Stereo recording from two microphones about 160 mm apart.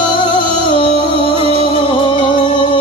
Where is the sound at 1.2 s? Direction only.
35° right (ahead or behind).